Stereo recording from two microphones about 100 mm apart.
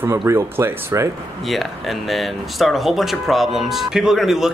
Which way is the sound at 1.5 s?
Centre (ahead or behind).